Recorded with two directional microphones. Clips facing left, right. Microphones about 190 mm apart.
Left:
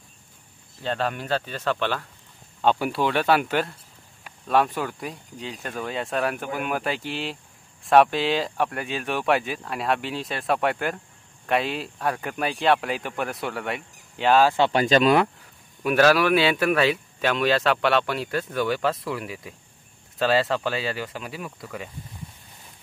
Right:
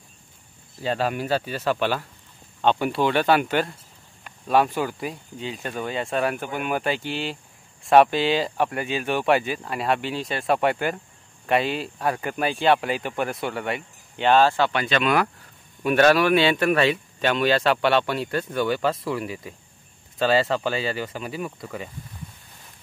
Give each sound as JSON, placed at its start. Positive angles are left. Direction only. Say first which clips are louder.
{"t": 0.8, "sound": "speech", "louder": "right 2 dB", "side_deg": -5}
{"t": 2.6, "sound": "speech", "louder": "right 1 dB", "side_deg": 5}
{"t": 14.7, "sound": "speech", "louder": "left 4 dB", "side_deg": 40}
{"t": 15.8, "sound": "speech", "louder": "right 1 dB", "side_deg": 0}